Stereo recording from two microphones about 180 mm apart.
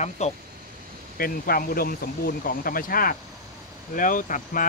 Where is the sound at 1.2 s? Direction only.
55° left (ahead or behind).